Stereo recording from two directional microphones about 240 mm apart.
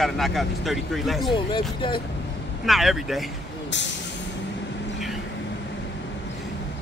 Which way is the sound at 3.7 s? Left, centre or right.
Left.